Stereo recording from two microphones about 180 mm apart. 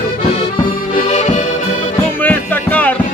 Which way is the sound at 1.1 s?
40° left (ahead or behind).